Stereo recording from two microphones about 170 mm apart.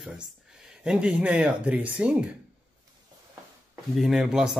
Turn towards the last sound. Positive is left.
turn(degrees=-5)  # may be behind; listen again after turning